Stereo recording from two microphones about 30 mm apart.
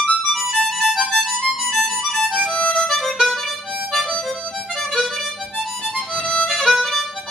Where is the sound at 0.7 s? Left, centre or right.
Centre.